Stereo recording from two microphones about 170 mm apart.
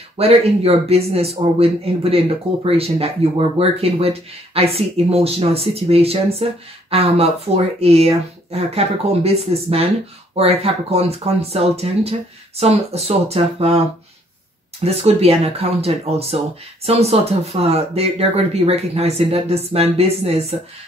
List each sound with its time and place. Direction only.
0.2 s a man's voice: 35° right (ahead or behind)
14.9 s a man's voice: 35° right (ahead or behind)